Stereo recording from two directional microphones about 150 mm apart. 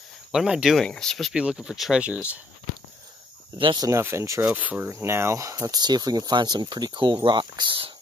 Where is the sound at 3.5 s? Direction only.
35° right (ahead or behind).